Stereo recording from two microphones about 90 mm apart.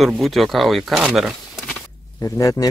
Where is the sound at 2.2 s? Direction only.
35° left (ahead or behind).